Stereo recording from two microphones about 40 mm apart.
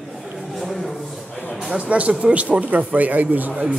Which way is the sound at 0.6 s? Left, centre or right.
Centre.